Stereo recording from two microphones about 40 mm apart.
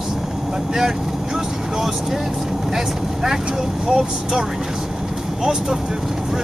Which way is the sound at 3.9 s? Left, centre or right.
Centre.